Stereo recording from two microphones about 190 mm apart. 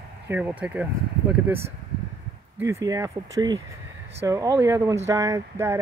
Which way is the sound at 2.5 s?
15° right (ahead or behind).